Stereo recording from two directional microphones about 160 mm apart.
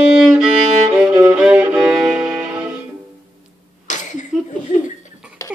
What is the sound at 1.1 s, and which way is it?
Violin, 15° right (ahead or behind).